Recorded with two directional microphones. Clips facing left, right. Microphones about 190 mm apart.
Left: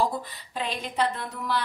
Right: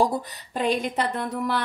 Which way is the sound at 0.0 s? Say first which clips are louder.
Right 4 dB; 45° right (ahead or behind).